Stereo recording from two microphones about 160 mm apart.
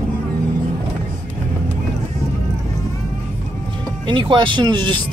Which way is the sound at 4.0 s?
30° right (ahead or behind).